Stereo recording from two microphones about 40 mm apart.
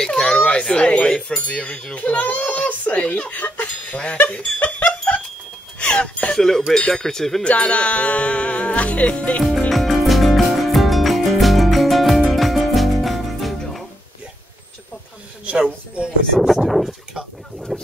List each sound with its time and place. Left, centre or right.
0.0 s children playing: centre
0.7 s speech: left
2.0 s speech: left
3.6 s music: left
4.3 s a sound: left
5.8 s speech: left
6.3 s speech: centre
7.4 s music: left
9.7 s music: centre
16.6 s speech: centre